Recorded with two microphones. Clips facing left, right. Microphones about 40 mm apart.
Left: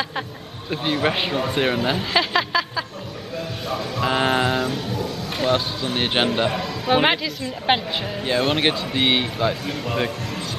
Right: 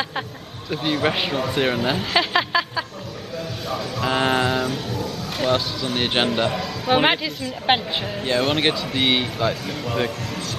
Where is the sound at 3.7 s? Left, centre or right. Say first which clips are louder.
Left 1 dB; centre.